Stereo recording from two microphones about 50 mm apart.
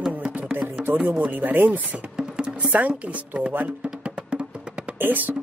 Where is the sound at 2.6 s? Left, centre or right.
Right.